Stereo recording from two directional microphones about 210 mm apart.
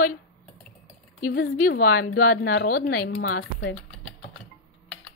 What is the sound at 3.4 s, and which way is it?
Speech, 70° left (ahead or behind).